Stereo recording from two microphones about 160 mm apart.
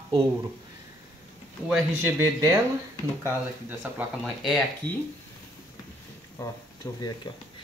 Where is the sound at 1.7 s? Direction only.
15° right (ahead or behind).